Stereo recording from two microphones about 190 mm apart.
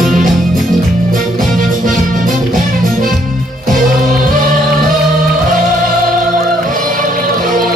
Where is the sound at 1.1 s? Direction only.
45° right (ahead or behind).